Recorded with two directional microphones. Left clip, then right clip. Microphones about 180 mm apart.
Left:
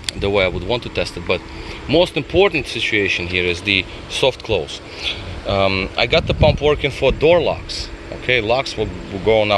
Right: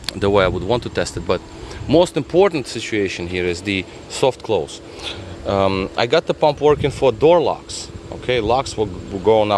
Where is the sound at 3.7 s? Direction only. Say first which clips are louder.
Left 5 dB; 90° right.